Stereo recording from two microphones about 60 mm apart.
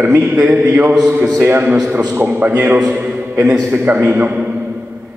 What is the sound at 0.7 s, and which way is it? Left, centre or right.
Speech, right.